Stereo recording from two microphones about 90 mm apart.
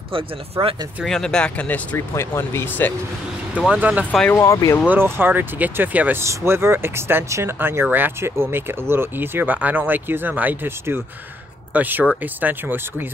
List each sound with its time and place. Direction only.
0.1 s speech: 90° right
1.0 s speech: 5° left (ahead or behind)
2.0 s speech: 30° left (ahead or behind)
3.5 s speech: 5° right (ahead or behind)
3.8 s speech: 15° right (ahead or behind)
4.4 s speech: 40° left (ahead or behind)
4.8 s speech: 25° right (ahead or behind)